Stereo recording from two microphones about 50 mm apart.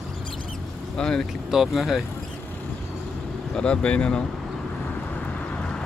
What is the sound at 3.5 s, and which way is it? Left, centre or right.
Speech, left.